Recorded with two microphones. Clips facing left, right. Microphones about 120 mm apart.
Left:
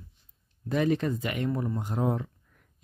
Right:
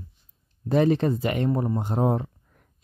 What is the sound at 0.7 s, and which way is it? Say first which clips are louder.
Speech: right 5 dB; 35° right (ahead or behind).